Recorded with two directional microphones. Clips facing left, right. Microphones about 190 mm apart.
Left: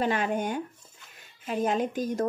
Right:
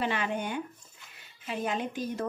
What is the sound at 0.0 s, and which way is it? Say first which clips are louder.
Speech: left 4 dB; 45° left (ahead or behind).